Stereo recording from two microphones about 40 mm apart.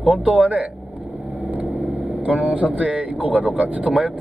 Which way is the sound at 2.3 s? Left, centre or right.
Right.